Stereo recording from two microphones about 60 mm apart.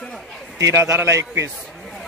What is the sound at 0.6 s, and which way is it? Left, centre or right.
Speech, right.